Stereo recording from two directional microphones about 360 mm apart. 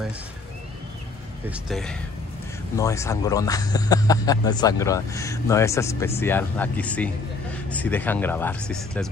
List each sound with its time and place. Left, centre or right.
1.5 s speech: centre